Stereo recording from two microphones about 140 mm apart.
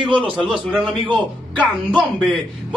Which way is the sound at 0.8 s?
35° right (ahead or behind).